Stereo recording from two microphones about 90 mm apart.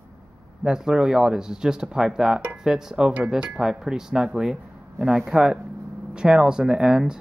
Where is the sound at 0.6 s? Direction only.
5° right (ahead or behind).